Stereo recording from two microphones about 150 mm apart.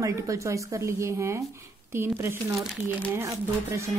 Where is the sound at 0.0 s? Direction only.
20° right (ahead or behind).